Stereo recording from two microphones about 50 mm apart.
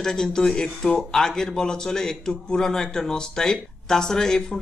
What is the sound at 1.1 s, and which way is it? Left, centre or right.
Speech, centre.